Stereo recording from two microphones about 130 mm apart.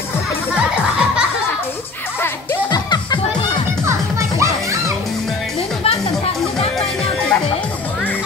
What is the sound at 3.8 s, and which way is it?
Music, 20° right (ahead or behind).